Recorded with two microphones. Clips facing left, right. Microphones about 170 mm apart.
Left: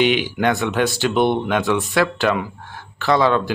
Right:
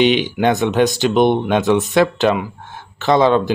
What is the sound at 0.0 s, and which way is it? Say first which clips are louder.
Speech: right 3 dB; 20° right (ahead or behind).